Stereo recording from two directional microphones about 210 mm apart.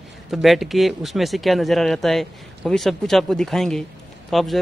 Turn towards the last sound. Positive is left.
turn(degrees=0)  # may be behind; listen again after turning